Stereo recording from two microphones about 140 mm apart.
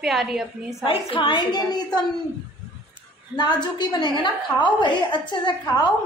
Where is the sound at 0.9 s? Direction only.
40° left (ahead or behind).